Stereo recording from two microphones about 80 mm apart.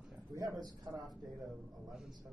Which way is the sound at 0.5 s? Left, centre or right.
Right.